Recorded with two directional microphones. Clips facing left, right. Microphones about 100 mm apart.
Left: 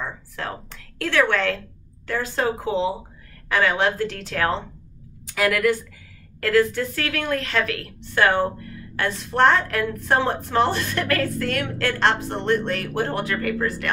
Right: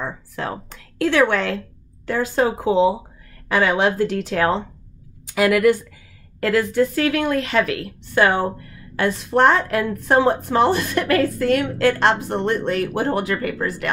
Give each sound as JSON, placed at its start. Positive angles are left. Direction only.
{"t": 0.4, "sound": "a woman's voice", "side_deg": -15}